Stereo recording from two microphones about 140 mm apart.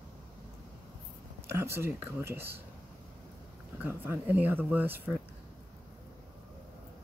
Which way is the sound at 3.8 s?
15° right (ahead or behind).